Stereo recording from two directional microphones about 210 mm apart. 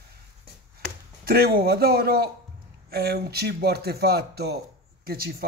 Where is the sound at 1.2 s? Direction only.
45° right (ahead or behind).